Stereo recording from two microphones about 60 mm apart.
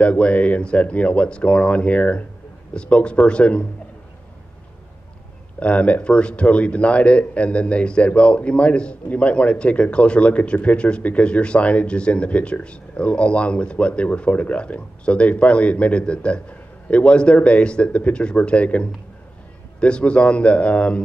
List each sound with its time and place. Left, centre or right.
0.0 s speech: left
5.6 s speech: left